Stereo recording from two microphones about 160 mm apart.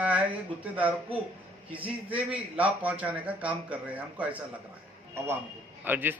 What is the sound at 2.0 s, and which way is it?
A man's voice, 10° right (ahead or behind).